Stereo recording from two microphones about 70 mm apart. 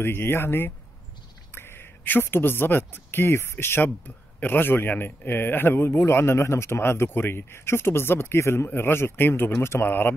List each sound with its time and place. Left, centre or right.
0.0 s a man's voice: left